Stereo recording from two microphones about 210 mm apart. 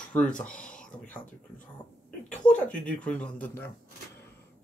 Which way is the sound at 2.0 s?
5° left (ahead or behind).